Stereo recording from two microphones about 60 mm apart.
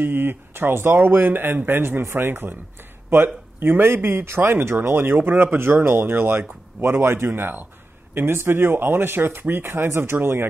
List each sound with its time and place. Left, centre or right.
0.0 s speech: right